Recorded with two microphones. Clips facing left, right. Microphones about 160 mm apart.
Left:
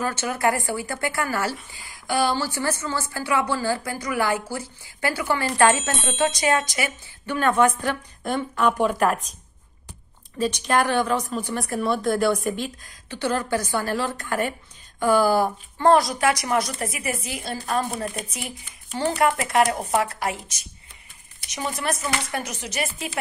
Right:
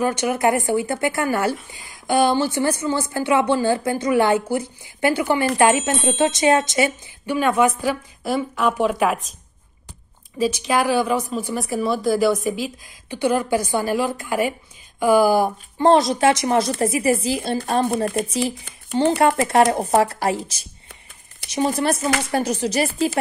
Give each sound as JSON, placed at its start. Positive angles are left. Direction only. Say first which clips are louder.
{"t": 0.0, "sound": "a woman's voice", "louder": "right 4 dB", "side_deg": -15}
{"t": 7.2, "sound": "speech", "louder": "right 2 dB", "side_deg": -10}
{"t": 10.4, "sound": "a woman's voice", "louder": "right 2 dB", "side_deg": -5}
{"t": 17.9, "sound": "speech", "louder": "right 8 dB", "side_deg": -55}
{"t": 18.9, "sound": "speech", "louder": "right 5 dB", "side_deg": -25}